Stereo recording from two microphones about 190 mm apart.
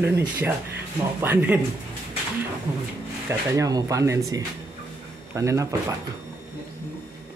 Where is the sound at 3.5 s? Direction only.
15° right (ahead or behind).